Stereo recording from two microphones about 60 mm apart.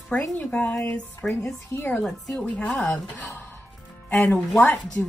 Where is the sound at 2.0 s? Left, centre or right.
Centre.